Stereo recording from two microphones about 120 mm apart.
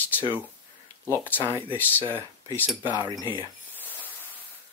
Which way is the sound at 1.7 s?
15° left (ahead or behind).